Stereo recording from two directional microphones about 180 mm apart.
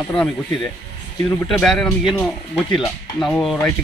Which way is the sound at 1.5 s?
Centre (ahead or behind).